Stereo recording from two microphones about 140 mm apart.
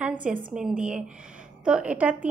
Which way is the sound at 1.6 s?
10° right (ahead or behind).